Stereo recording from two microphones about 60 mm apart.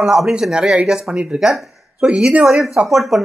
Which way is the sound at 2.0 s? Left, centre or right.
Centre.